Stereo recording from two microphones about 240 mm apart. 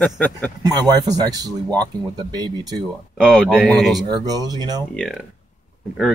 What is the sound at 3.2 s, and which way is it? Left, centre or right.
Speech, centre.